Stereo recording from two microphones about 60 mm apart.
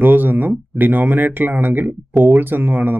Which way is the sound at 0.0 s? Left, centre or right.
Right.